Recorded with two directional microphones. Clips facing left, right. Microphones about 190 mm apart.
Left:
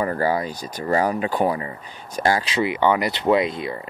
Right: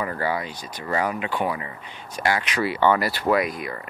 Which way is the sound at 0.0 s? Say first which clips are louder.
Left 5 dB; 40° left (ahead or behind).